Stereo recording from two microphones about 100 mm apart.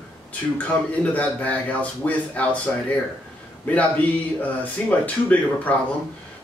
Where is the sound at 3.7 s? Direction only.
15° left (ahead or behind).